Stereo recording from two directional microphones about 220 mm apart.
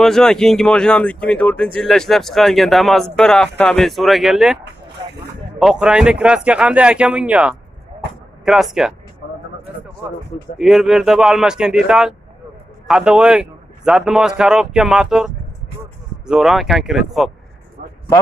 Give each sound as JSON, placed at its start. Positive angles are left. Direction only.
{"t": 0.0, "sound": "speech", "side_deg": 0}
{"t": 5.6, "sound": "speech", "side_deg": -5}
{"t": 10.6, "sound": "speech", "side_deg": 0}